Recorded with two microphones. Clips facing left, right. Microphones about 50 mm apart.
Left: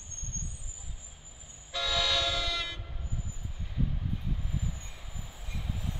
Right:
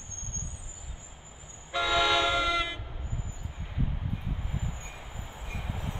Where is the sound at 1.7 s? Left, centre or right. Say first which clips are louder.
Right 5 dB; right.